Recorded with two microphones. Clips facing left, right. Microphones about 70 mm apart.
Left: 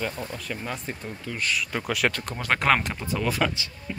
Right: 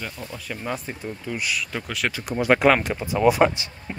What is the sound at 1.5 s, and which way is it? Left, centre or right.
Speech, centre.